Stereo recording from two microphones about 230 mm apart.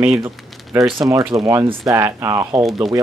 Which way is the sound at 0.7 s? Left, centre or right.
Right.